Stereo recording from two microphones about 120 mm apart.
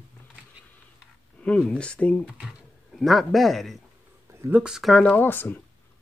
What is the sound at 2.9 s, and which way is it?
Speech, centre (ahead or behind).